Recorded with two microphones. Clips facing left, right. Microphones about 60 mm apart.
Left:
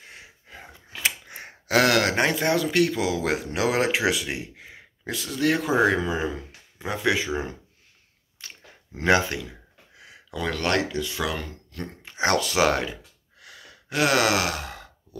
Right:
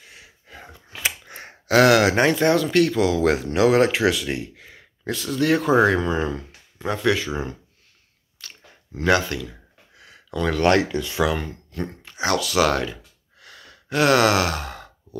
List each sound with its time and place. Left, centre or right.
0.0 s wheeze: left
0.5 s gasp: centre
1.0 s a sound: centre
2.1 s speech: centre
5.1 s speech: centre
8.4 s a sound: left
10.6 s speech: right
11.3 s speech: centre
12.2 s speech: left
12.5 s a sound: centre